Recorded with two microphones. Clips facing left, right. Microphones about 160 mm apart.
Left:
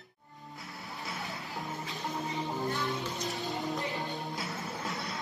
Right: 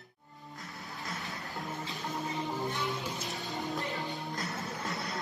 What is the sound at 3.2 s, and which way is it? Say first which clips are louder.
Music: left 3 dB; centre (ahead or behind).